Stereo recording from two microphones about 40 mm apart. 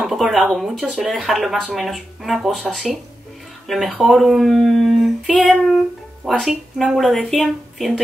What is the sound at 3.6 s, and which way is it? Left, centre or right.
Speech, centre.